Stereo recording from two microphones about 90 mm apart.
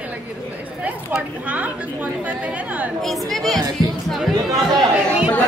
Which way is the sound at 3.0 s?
Centre (ahead or behind).